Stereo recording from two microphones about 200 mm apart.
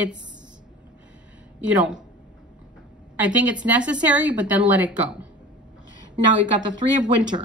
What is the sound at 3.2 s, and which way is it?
A woman's voice, 5° right (ahead or behind).